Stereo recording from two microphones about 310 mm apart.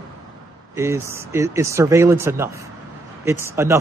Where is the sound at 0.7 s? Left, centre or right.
Centre.